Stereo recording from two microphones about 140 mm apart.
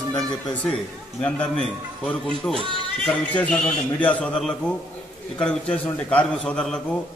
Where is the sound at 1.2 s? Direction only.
10° left (ahead or behind).